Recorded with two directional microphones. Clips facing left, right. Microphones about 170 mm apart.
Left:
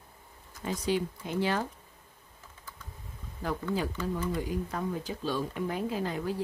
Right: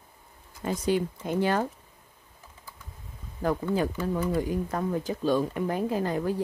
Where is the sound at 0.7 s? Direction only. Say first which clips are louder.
Right 4 dB; 45° right (ahead or behind).